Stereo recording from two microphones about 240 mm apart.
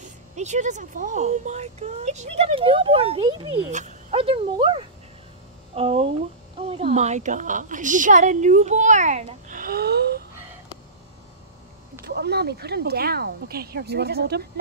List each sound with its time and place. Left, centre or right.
0.4 s a woman's voice: right
12.2 s a woman's voice: right